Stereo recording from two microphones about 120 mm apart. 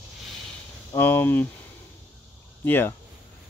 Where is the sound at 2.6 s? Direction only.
15° left (ahead or behind).